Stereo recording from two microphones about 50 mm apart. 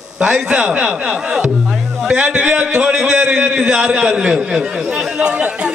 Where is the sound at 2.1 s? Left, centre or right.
Right.